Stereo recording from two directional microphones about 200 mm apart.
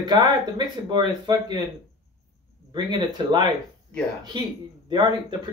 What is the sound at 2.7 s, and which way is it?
Speech, 20° right (ahead or behind).